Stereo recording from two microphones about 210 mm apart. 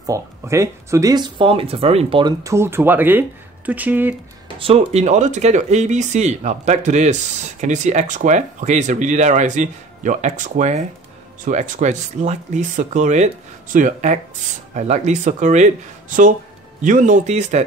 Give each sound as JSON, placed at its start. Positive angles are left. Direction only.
{"t": 0.0, "sound": "speech", "side_deg": -15}
{"t": 4.6, "sound": "speech", "side_deg": -30}